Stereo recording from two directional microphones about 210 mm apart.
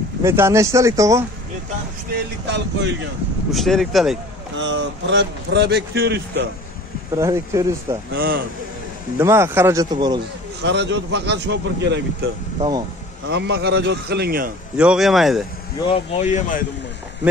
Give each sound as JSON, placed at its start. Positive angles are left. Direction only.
{"t": 0.2, "sound": "speech", "side_deg": -10}
{"t": 2.4, "sound": "speech", "side_deg": -55}
{"t": 3.5, "sound": "speech", "side_deg": 0}
{"t": 4.6, "sound": "a man's voice", "side_deg": -60}
{"t": 7.2, "sound": "speech", "side_deg": -15}
{"t": 8.1, "sound": "a man's voice", "side_deg": -45}
{"t": 9.2, "sound": "speech", "side_deg": -10}
{"t": 10.6, "sound": "speech", "side_deg": -55}
{"t": 13.3, "sound": "a man's voice", "side_deg": -55}
{"t": 14.8, "sound": "speech", "side_deg": -5}
{"t": 15.9, "sound": "speech", "side_deg": 30}